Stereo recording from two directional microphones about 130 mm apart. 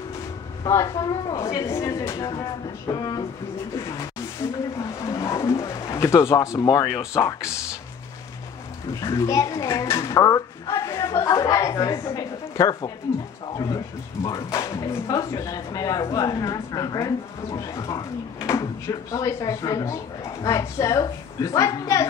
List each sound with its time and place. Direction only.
0.7 s speech: 25° left (ahead or behind)
4.4 s speech: 40° left (ahead or behind)
4.7 s speech: 20° left (ahead or behind)
9.0 s a child's voice: 25° left (ahead or behind)